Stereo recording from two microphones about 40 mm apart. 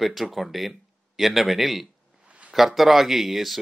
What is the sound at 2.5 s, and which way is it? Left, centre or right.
Speech, centre.